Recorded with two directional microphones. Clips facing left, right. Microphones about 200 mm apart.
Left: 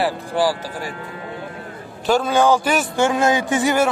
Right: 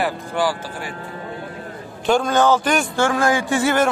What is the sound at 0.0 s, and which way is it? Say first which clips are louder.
Speech: left 2 dB; 35° left (ahead or behind).